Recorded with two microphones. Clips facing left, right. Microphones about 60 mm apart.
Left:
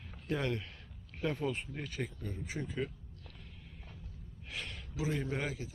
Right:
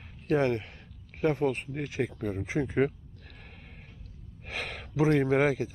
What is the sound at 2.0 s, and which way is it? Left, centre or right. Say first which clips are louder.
Speech: right 10 dB; right.